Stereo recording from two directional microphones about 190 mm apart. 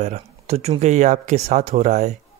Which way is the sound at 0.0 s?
35° right (ahead or behind).